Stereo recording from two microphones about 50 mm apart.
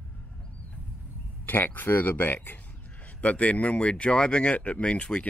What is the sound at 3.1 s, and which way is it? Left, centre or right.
Speech, left.